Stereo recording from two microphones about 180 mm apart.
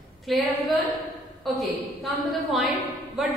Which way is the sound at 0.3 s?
Centre (ahead or behind).